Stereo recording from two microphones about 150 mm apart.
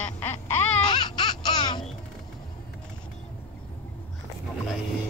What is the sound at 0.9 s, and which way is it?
Laughter, 30° left (ahead or behind).